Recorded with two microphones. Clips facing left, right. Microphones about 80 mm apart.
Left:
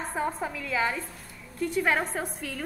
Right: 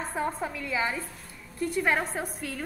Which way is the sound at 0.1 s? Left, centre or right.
Centre.